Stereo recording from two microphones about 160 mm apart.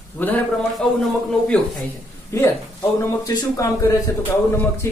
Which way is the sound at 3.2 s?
20° left (ahead or behind).